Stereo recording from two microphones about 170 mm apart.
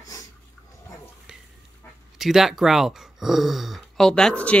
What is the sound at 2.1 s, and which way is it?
Speech, centre (ahead or behind).